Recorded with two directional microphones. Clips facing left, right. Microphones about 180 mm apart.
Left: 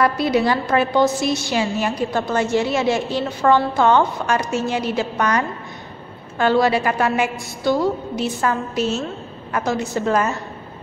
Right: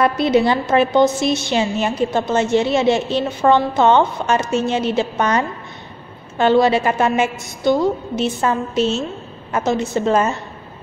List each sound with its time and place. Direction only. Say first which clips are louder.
0.0 s a woman's voice: right 3 dB; 20° right (ahead or behind)